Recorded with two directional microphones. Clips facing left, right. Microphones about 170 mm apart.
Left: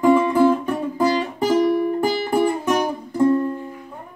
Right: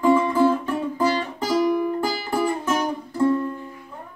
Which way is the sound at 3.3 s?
35° left (ahead or behind).